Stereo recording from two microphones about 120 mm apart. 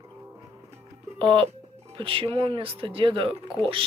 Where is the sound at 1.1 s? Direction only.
45° right (ahead or behind).